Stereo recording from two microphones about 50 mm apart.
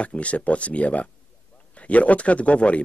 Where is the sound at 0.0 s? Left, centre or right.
Left.